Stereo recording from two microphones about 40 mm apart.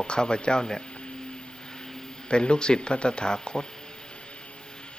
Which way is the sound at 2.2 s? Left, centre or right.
Left.